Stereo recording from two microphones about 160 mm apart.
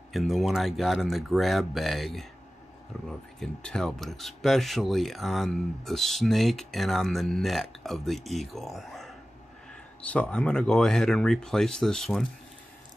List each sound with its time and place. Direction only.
0.1 s speech: centre (ahead or behind)
10.1 s speech: 10° left (ahead or behind)